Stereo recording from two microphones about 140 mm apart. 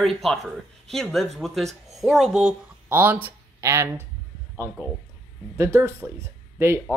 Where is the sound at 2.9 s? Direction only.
15° right (ahead or behind).